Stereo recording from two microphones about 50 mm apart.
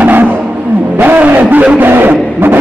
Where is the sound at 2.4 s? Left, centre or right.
Right.